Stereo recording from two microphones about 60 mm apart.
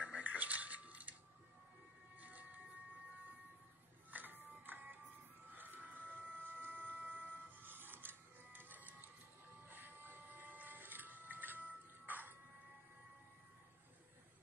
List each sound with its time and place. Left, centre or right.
0.0 s dishes: right
2.1 s music: right
4.1 s music: right
5.5 s printer: right
9.7 s a sound: right